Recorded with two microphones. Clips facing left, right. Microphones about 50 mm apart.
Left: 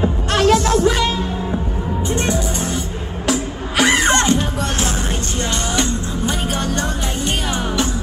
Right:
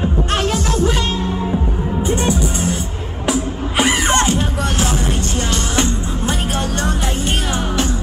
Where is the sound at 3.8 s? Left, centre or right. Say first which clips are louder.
Left 2 dB; left.